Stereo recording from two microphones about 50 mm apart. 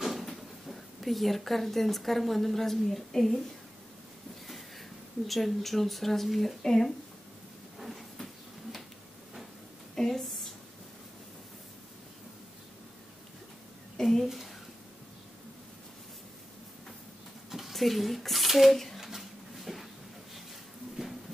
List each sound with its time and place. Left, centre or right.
0.0 s speech: centre
4.5 s speech: centre
7.8 s a sound: centre
9.9 s a woman's voice: centre
13.9 s a woman's voice: centre
17.5 s speech: centre
18.9 s a sound: centre